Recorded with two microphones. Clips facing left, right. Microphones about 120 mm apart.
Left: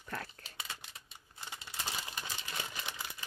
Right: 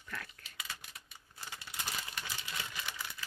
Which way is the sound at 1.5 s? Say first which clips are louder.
Left 1 dB; 20° left (ahead or behind).